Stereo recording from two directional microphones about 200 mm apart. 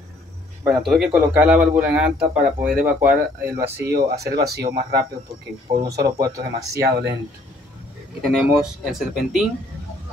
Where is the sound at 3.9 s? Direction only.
55° right (ahead or behind).